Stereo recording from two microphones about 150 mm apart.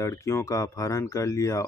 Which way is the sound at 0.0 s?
20° left (ahead or behind).